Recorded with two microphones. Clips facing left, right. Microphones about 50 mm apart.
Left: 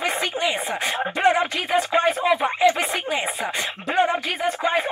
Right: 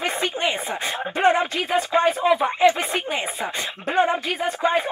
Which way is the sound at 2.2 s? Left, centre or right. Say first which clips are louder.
Right 1 dB; left.